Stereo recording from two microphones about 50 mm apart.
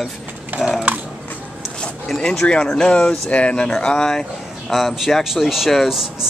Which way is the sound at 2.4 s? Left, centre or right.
Centre.